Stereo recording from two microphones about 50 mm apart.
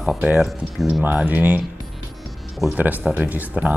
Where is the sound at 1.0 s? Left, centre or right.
Right.